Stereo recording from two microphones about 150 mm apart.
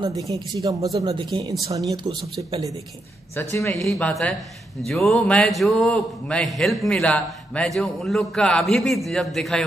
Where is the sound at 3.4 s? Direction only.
20° left (ahead or behind).